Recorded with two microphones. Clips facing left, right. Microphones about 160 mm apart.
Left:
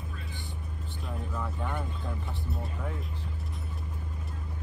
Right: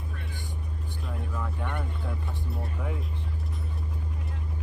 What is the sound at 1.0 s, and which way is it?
Vehicle, centre (ahead or behind).